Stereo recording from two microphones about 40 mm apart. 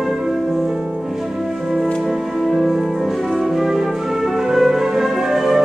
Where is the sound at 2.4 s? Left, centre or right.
Centre.